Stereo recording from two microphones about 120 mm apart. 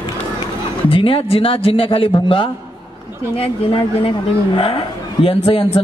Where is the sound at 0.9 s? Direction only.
50° left (ahead or behind).